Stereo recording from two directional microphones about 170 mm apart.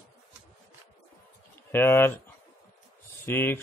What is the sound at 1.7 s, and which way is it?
Speech, 10° left (ahead or behind).